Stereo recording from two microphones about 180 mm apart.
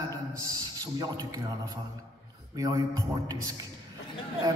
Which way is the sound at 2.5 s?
20° right (ahead or behind).